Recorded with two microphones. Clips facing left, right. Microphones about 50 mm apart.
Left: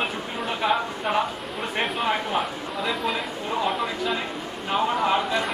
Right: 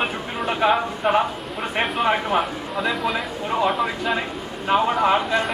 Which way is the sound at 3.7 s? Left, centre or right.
Centre.